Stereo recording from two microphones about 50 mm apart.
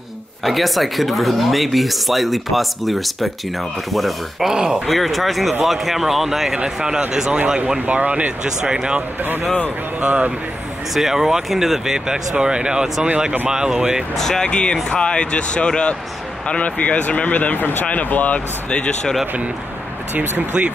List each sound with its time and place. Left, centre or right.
0.5 s speech: centre
4.5 s speech: centre
4.8 s speech: centre
7.8 s speech: right
8.5 s speech: centre
9.2 s speech: right
10.0 s speech: right
11.0 s speech: centre
14.1 s speech: centre; by 18.4 s left
18.7 s speech: centre